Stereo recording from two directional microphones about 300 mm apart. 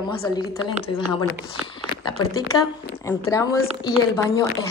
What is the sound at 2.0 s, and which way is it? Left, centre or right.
Speech, centre.